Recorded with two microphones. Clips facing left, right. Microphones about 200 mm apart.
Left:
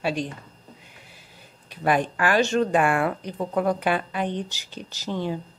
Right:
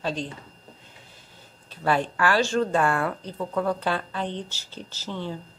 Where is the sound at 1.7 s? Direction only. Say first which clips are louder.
Left 2 dB; 15° left (ahead or behind).